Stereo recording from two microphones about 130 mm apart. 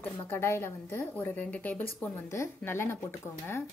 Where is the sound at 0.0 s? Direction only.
15° left (ahead or behind).